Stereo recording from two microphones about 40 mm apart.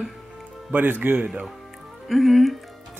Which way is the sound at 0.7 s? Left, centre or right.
Right.